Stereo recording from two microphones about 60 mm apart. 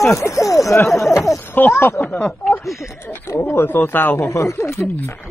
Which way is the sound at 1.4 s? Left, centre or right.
Left.